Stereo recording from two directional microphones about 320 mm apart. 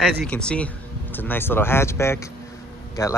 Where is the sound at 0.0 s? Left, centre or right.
Centre.